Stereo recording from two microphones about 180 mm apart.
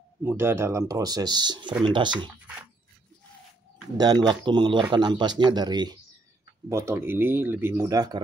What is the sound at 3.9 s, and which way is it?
Speech, 20° right (ahead or behind).